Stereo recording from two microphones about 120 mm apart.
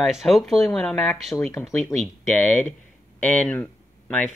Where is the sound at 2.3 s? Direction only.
15° left (ahead or behind).